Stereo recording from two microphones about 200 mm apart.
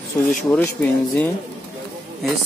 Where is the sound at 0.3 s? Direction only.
10° left (ahead or behind).